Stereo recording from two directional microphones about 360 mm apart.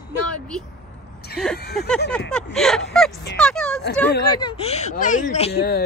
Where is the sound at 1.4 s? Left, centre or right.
Centre.